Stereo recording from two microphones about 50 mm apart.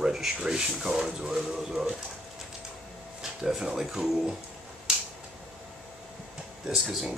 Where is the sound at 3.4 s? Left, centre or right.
Centre.